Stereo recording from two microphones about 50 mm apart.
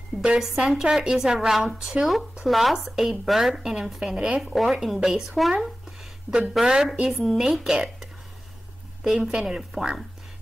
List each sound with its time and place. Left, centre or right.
0.4 s speech: centre
2.4 s speech: centre
4.4 s speech: centre